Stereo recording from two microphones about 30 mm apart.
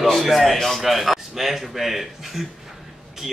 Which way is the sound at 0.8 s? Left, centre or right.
Centre.